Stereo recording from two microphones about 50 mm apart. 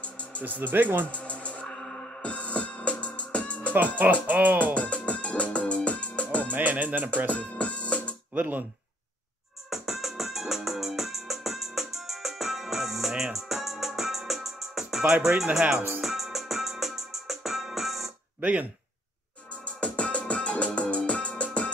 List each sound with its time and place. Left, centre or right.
0.0 s music: left
0.4 s speech: right
1.1 s music: left
4.0 s speech: right
4.7 s music: left
6.5 s speech: right
7.2 s music: left
8.3 s speech: right
9.7 s music: centre
15.2 s speech: centre
16.0 s music: centre
18.4 s speech: right
19.6 s music: left